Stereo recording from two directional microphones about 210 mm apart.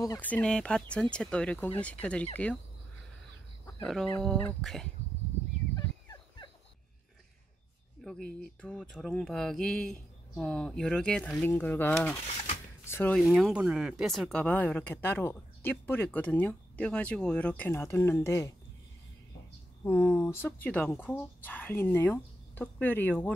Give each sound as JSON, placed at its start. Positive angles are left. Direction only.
{"t": 0.0, "sound": "speech", "side_deg": 10}
{"t": 3.8, "sound": "speech", "side_deg": 0}
{"t": 5.8, "sound": "fowl", "side_deg": 15}
{"t": 8.0, "sound": "speech", "side_deg": 5}
{"t": 13.2, "sound": "speech", "side_deg": 0}
{"t": 19.8, "sound": "speech", "side_deg": 10}